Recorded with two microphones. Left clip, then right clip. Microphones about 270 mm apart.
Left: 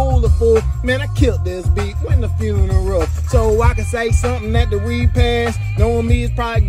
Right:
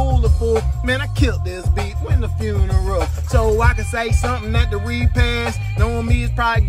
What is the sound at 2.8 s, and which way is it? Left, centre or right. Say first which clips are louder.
Music: left 3 dB; centre.